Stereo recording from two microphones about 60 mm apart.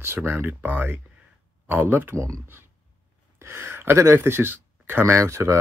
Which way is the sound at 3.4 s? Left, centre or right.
Right.